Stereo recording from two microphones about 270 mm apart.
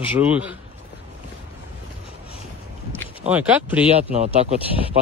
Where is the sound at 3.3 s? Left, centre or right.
Centre.